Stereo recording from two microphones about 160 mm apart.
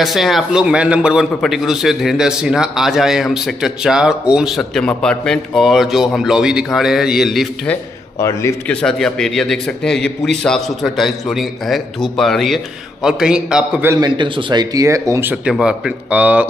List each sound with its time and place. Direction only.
0.0 s a man's voice: centre (ahead or behind)
8.2 s a man's voice: 20° left (ahead or behind)
8.6 s a man's voice: 5° left (ahead or behind)
13.8 s speech: 25° right (ahead or behind); by 16.4 s 10° right (ahead or behind)